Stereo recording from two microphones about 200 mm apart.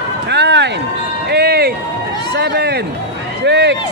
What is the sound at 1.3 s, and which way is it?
Music, 50° right (ahead or behind).